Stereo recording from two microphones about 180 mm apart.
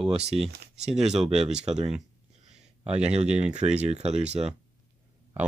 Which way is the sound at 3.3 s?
5° right (ahead or behind).